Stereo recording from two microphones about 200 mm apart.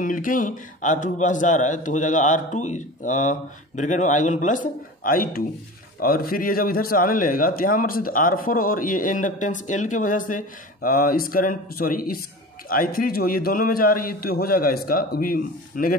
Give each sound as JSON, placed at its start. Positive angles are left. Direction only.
{"t": 0.0, "sound": "a man's voice", "side_deg": 40}